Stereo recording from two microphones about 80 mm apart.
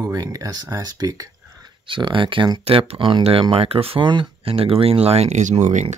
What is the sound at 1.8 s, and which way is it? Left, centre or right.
Speech, right.